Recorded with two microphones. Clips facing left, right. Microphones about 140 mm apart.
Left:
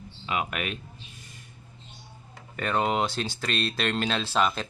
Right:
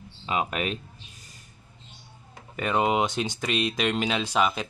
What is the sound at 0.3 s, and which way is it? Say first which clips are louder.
Speech: right 3 dB; 30° right (ahead or behind).